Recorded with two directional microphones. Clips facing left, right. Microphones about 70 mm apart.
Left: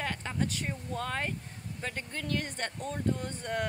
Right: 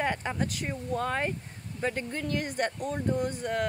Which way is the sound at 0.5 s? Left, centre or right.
Centre.